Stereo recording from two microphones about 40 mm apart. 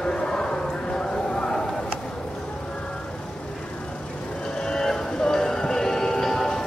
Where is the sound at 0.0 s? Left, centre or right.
Left.